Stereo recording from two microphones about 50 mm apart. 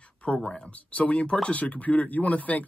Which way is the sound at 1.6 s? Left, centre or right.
Left.